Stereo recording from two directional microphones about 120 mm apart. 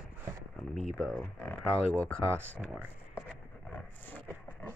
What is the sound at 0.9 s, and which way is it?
Speech, centre (ahead or behind).